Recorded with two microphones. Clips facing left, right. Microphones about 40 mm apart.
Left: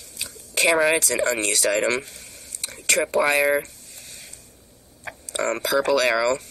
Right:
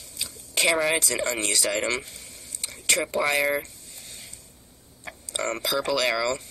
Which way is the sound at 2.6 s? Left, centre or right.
Left.